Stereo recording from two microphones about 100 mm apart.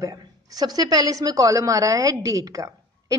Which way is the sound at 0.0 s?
40° right (ahead or behind).